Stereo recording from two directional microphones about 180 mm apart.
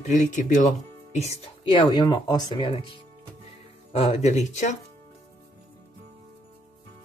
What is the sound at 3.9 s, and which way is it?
Speech, 35° left (ahead or behind).